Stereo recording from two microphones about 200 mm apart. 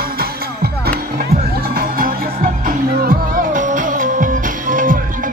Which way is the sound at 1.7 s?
45° right (ahead or behind).